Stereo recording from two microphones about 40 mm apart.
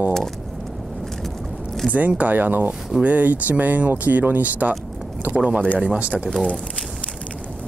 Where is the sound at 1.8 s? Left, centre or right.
Right.